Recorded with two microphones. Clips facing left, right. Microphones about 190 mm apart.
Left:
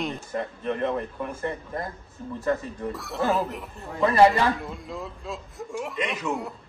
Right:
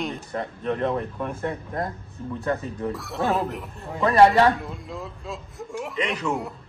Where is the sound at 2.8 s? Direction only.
Centre (ahead or behind).